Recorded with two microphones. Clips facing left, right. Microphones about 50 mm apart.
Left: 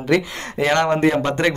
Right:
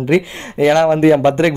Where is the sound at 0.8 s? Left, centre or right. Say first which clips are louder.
Right 6 dB; centre.